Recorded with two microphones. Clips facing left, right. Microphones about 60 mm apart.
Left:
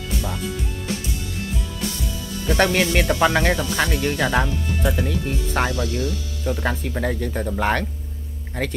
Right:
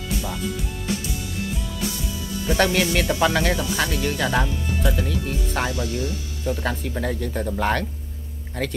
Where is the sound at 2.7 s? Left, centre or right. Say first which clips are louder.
Left 2 dB; left.